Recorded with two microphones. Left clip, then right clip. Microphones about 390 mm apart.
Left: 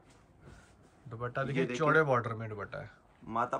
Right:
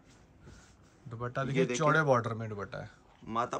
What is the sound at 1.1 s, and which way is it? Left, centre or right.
Speech, centre.